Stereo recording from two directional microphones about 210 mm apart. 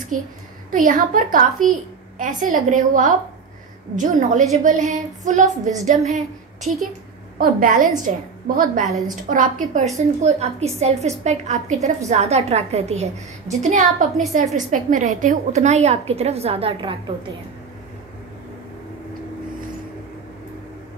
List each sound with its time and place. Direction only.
0.7 s a woman's voice: 40° right (ahead or behind)
7.3 s a woman's voice: 45° right (ahead or behind); by 17.0 s 25° right (ahead or behind)